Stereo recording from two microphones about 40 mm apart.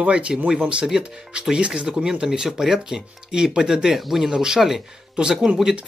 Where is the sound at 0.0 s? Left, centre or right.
Right.